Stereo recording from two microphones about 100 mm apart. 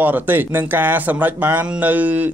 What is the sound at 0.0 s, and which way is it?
Speech, 20° right (ahead or behind).